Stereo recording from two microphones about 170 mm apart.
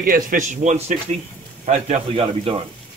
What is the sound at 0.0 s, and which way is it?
Speech, 55° right (ahead or behind).